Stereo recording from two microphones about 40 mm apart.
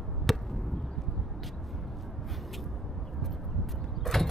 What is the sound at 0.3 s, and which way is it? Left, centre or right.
Chop, centre.